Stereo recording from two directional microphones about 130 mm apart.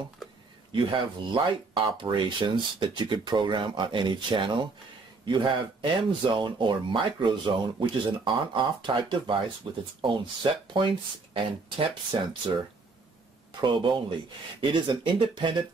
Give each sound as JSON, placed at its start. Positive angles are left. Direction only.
{"t": 0.7, "sound": "speech", "side_deg": -40}
{"t": 13.6, "sound": "speech", "side_deg": -40}